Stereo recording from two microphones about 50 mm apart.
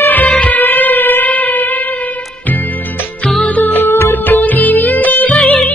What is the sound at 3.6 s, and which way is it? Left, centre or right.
Music, left.